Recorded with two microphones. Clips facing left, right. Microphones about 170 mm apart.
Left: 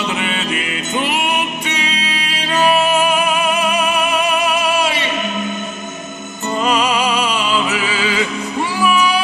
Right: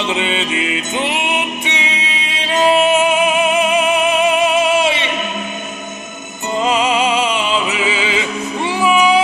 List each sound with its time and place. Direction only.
0.0 s music: 20° right (ahead or behind)
6.6 s music: 25° right (ahead or behind)
8.7 s a sound: 25° right (ahead or behind)